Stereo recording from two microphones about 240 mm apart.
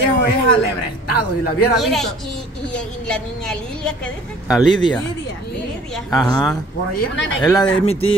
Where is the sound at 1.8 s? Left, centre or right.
Centre.